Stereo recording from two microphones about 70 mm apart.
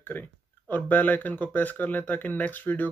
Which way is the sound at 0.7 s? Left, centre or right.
Left.